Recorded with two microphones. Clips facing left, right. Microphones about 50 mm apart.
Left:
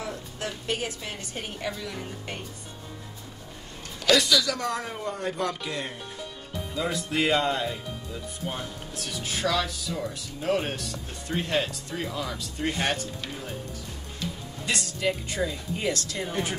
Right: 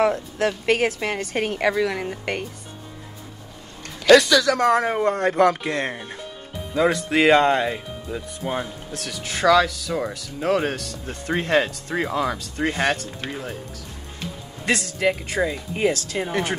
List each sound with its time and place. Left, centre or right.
0.0 s speech: right
4.0 s speech: right
14.7 s speech: right
15.4 s speech: right